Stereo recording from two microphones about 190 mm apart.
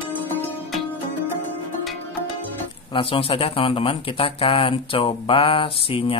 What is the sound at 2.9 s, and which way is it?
Speech, 30° left (ahead or behind).